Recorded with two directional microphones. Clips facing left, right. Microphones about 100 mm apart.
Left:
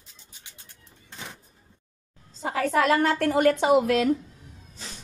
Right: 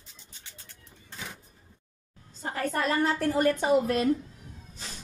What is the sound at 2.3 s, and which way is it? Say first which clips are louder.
A woman's voice: left 6 dB; 90° left.